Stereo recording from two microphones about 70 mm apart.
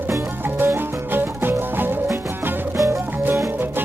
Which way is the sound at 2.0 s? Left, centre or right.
Right.